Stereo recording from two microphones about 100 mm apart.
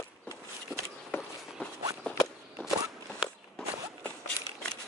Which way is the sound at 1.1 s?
20° left (ahead or behind).